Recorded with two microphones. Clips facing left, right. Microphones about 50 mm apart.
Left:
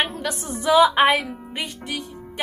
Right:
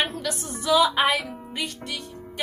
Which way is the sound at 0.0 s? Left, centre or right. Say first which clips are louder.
Left 2 dB; left.